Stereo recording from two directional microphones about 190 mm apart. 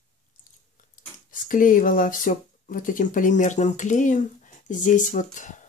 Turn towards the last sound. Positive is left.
turn(degrees=40)  # may be behind; listen again after turning